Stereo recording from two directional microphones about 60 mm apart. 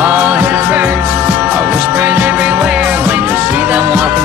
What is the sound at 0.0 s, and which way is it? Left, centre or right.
Music, right.